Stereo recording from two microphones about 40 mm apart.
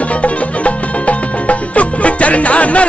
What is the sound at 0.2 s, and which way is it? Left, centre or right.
Music, left.